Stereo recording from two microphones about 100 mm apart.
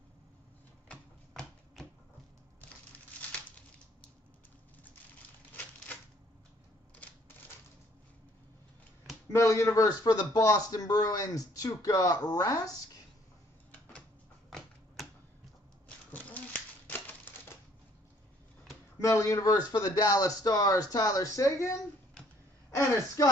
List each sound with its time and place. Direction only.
0.8 s a sound: 10° left (ahead or behind)
9.3 s speech: 30° left (ahead or behind)
15.0 s a sound: centre (ahead or behind)
16.1 s typewriter: 15° left (ahead or behind)
18.9 s speech: 30° left (ahead or behind)
22.8 s speech: 35° left (ahead or behind)